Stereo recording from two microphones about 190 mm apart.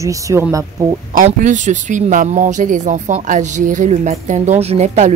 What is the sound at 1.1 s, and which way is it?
Speech, 45° right (ahead or behind).